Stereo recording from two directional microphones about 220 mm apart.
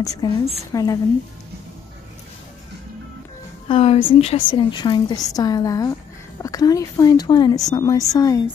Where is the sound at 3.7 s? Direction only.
25° left (ahead or behind).